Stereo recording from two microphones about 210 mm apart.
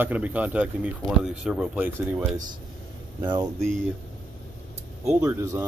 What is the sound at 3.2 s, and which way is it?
Speech, 15° right (ahead or behind).